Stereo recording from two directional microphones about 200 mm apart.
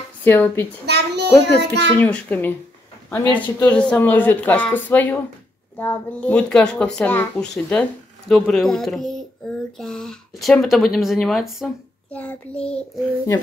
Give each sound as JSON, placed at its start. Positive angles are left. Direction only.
{"t": 0.2, "sound": "speech", "side_deg": 10}
{"t": 0.8, "sound": "a child's voice", "side_deg": -55}
{"t": 2.0, "sound": "speech", "side_deg": 10}